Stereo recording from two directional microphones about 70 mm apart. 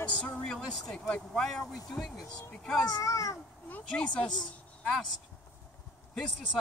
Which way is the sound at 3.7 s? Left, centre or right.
Centre.